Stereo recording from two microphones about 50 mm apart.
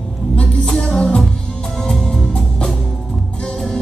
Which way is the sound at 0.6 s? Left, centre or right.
Centre.